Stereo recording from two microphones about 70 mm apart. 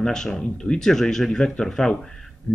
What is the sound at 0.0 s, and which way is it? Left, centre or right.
Speech, centre.